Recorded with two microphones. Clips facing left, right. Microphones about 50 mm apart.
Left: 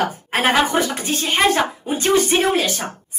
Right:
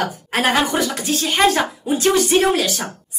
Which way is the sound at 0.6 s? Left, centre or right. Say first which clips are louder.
Even; left.